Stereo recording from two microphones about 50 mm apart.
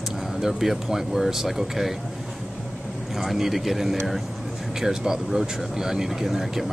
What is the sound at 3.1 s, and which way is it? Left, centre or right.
Speech, centre.